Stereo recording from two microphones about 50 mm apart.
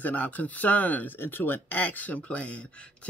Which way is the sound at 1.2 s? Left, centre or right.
Left.